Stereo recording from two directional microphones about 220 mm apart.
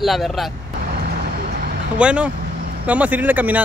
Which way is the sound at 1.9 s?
5° right (ahead or behind).